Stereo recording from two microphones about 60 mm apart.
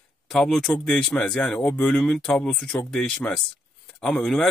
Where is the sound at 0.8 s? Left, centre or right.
Centre.